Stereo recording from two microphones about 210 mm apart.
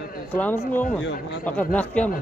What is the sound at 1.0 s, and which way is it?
Speech, 60° left (ahead or behind).